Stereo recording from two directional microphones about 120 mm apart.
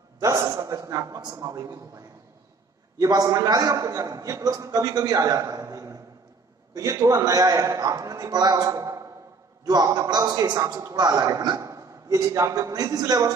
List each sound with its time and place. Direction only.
0.2 s a man's voice: 30° right (ahead or behind)